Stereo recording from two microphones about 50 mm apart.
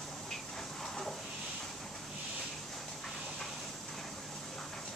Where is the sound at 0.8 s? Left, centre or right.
Centre.